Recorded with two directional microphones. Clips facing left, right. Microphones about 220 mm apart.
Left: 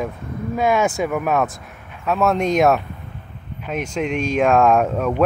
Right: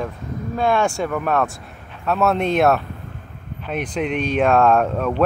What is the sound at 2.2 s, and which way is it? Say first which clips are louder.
Speech: even; 5° right (ahead or behind).